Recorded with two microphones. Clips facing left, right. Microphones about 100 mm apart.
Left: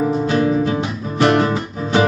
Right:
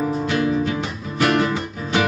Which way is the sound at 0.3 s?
35° left (ahead or behind).